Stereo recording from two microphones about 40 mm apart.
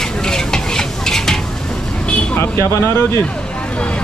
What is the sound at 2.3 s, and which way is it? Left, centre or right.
Speech, left.